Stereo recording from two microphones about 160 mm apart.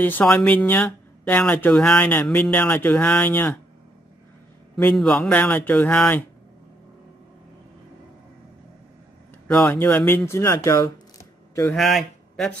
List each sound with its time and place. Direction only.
0.0 s speech: 10° left (ahead or behind)
4.7 s speech: 5° left (ahead or behind)
9.5 s speech: 10° left (ahead or behind)
11.7 s speech: centre (ahead or behind)